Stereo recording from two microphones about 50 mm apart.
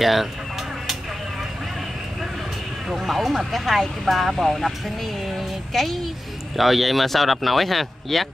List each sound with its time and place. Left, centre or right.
0.0 s speech: centre
2.9 s speech: centre